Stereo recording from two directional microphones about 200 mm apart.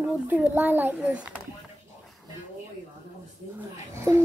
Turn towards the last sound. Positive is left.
turn(degrees=-10)  # may be behind; listen again after turning